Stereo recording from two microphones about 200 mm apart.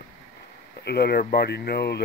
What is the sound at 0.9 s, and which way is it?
Speech, 55° left (ahead or behind).